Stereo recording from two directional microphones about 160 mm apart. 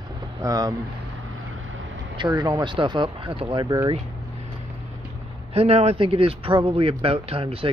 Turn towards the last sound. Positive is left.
turn(degrees=-35)  # may be behind; listen again after turning